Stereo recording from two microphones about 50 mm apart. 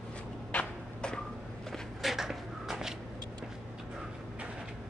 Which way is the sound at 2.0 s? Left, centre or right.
Centre.